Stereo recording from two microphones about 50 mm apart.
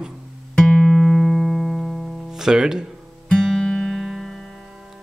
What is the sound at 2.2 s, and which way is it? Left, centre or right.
Speech, centre.